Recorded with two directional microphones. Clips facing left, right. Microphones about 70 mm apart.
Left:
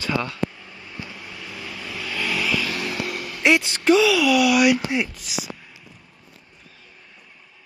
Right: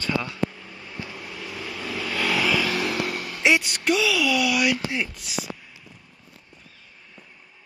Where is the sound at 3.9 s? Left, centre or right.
Centre.